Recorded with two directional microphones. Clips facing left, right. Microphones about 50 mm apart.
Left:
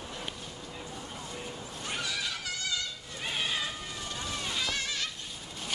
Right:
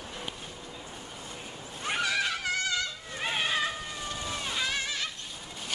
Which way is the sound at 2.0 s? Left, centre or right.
Right.